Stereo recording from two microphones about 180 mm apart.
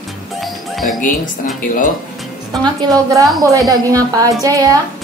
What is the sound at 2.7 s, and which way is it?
Child singing, 20° right (ahead or behind).